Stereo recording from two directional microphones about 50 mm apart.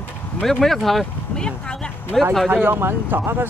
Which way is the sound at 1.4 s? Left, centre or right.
Centre.